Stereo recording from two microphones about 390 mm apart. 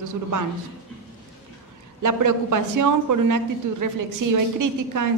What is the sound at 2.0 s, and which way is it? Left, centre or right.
A woman's voice, right.